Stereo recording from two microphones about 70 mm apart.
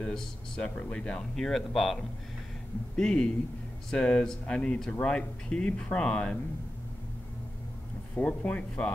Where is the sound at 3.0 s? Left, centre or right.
Centre.